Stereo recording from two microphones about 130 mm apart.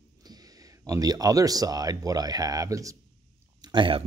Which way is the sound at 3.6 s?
40° right (ahead or behind).